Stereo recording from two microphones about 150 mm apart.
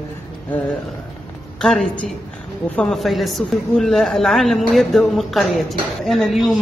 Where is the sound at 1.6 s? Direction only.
5° left (ahead or behind).